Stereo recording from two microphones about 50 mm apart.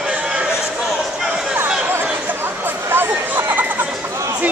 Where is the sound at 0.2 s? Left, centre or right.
Centre.